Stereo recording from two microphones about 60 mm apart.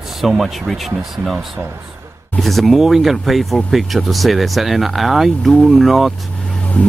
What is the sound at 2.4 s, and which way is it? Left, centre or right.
Speech, centre.